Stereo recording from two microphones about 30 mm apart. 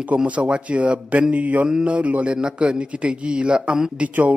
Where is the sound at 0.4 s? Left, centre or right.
Right.